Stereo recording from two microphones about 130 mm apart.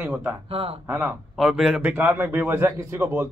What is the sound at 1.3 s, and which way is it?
Speech, 5° right (ahead or behind).